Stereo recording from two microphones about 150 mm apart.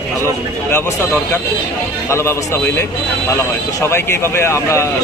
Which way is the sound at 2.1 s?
20° left (ahead or behind).